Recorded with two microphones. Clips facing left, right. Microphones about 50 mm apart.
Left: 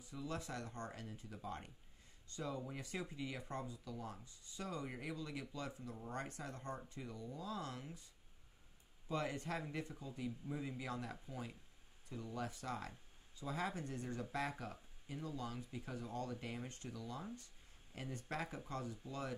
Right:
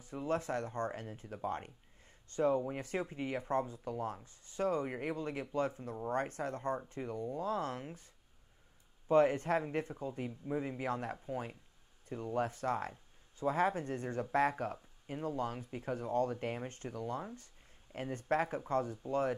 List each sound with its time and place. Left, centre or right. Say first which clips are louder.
0.0 s speech: right 10 dB; right